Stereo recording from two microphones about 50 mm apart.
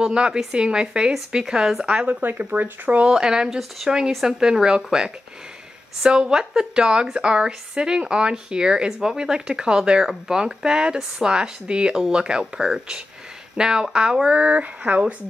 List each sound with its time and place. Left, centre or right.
0.0 s a woman's voice: centre
2.2 s speech: right
3.1 s a woman's voice: centre
14.4 s speech: right